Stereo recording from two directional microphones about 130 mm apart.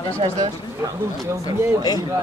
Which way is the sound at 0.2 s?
40° right (ahead or behind).